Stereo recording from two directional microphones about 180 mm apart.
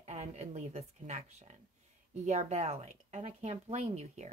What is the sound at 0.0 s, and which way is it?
A woman's voice, 40° right (ahead or behind).